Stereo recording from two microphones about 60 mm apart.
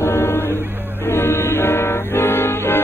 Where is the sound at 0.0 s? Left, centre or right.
Left.